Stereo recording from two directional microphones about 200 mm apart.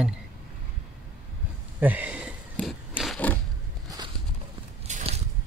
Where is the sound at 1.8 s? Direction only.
10° right (ahead or behind).